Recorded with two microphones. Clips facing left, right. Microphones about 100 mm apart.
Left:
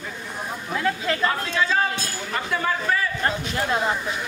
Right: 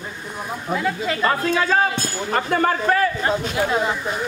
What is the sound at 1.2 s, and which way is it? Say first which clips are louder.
Music: right 7 dB; 45° right (ahead or behind).